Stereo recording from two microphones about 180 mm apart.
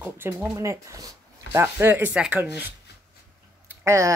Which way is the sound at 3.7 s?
15° right (ahead or behind).